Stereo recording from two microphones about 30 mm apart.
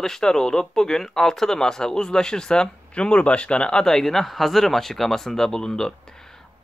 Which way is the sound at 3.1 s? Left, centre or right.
Left.